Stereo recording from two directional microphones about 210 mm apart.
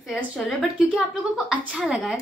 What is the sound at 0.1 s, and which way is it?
A woman's voice, centre (ahead or behind).